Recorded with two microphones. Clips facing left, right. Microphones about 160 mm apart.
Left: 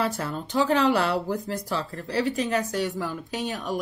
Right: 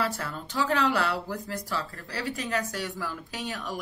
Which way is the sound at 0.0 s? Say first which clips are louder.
Left 4 dB; 20° left (ahead or behind).